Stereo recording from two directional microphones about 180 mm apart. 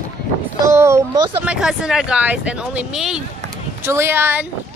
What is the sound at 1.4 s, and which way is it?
Speech, 5° right (ahead or behind).